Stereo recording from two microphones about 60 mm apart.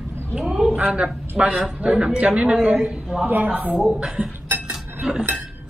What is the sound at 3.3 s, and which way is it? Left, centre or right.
Speech, right.